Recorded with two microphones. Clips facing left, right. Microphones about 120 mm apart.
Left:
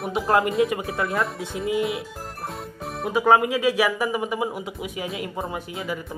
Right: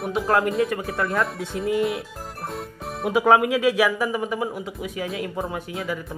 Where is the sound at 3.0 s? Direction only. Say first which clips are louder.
Right 1 dB; 10° right (ahead or behind).